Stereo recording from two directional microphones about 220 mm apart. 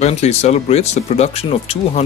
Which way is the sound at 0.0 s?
30° left (ahead or behind).